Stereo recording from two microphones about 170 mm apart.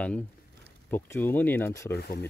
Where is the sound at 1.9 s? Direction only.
65° left (ahead or behind).